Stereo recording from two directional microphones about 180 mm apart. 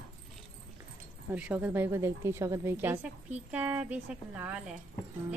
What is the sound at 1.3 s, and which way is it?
Speech, 10° right (ahead or behind).